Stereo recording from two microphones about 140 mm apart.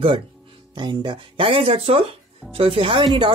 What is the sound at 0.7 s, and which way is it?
Speech, 35° right (ahead or behind).